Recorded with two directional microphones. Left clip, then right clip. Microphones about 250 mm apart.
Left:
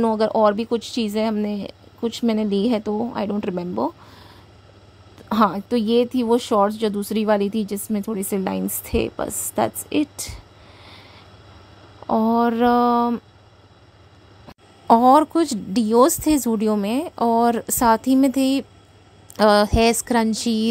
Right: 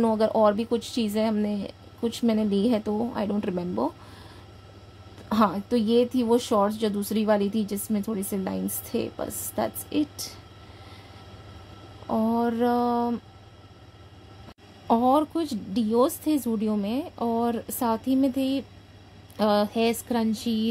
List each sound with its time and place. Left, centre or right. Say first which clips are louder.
0.0 s speech: left 4 dB; centre
5.3 s speech: left 4 dB; left
12.1 s speech: left 7 dB; left
14.9 s speech: left 8 dB; left